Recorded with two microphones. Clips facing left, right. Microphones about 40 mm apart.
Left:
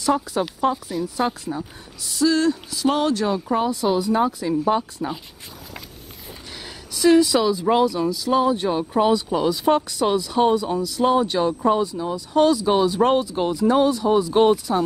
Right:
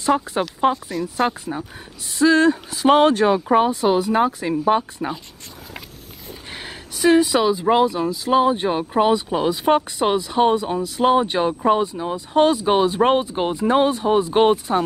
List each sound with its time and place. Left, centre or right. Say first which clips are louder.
0.0 s speech: right 1 dB; right
6.5 s speech: right 2 dB; right